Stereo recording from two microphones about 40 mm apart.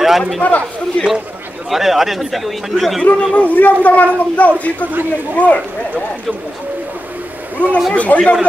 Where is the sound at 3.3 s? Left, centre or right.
Left.